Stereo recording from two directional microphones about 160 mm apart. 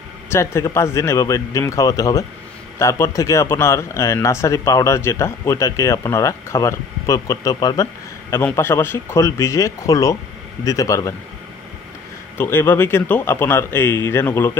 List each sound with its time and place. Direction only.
0.3 s speech: 15° left (ahead or behind)
12.4 s speech: 15° left (ahead or behind)